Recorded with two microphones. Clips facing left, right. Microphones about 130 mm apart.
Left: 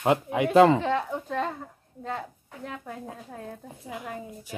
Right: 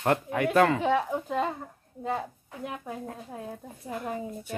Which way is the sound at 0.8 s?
10° right (ahead or behind).